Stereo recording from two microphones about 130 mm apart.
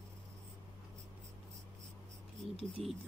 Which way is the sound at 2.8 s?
Centre (ahead or behind).